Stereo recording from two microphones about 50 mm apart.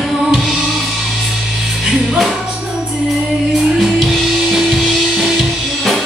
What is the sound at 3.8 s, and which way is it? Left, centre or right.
Music, centre.